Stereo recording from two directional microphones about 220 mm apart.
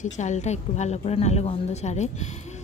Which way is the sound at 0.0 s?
30° left (ahead or behind).